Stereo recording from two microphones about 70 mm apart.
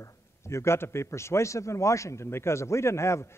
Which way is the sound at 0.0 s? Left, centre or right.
Left.